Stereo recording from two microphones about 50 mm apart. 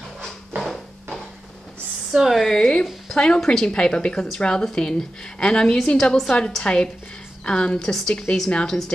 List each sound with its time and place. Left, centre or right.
2.1 s a woman's voice: centre
2.4 s a woman's voice: centre